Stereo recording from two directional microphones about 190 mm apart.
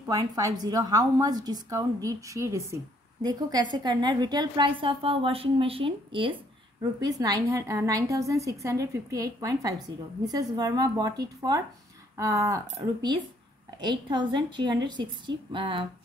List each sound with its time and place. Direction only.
0.0 s a woman's voice: 15° right (ahead or behind)
13.7 s a woman's voice: 25° right (ahead or behind)